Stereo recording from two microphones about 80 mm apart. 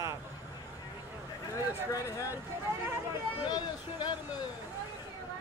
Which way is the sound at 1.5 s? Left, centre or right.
Left.